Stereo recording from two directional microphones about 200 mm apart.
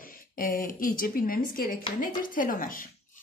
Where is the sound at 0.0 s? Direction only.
45° left (ahead or behind).